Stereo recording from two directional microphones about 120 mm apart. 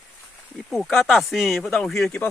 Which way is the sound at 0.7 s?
Centre (ahead or behind).